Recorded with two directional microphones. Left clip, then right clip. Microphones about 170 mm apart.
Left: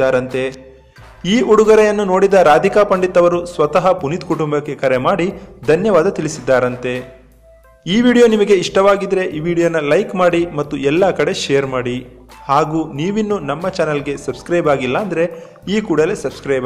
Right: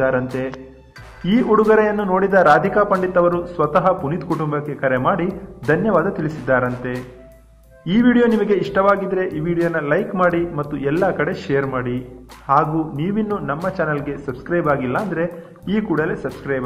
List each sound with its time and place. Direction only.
0.0 s a man's voice: 30° left (ahead or behind)